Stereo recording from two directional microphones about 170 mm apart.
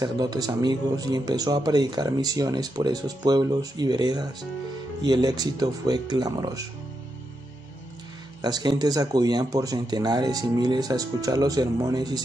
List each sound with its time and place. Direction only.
0.0 s speech: 20° right (ahead or behind)
8.4 s speech: 25° right (ahead or behind)